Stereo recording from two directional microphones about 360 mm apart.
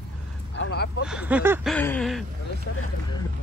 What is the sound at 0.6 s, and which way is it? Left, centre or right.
Speech, left.